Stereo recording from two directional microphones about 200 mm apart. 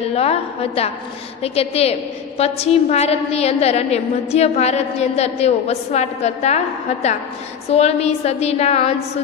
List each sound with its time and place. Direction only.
0.1 s a woman's voice: 30° left (ahead or behind)